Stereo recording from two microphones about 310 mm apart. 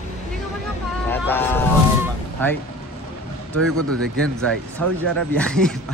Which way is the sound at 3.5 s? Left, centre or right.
Right.